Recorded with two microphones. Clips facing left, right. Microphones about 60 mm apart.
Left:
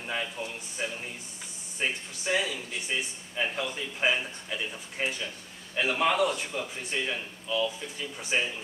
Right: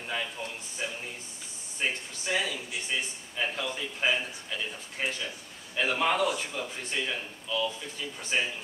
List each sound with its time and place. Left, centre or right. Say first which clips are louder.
0.0 s speech: left 1 dB; centre